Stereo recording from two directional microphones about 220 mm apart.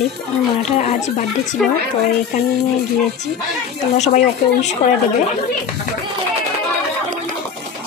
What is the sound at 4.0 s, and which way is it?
Speech, 30° left (ahead or behind).